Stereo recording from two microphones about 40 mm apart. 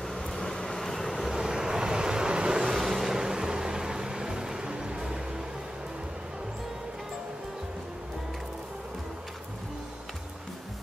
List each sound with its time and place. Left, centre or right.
0.0 s vehicle: centre; by 4.9 s right